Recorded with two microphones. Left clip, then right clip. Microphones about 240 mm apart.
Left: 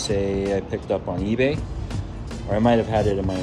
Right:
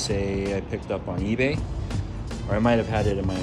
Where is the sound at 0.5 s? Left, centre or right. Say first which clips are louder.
Left 5 dB; centre.